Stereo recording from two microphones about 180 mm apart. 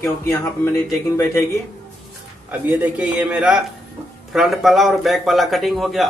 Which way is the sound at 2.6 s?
10° right (ahead or behind).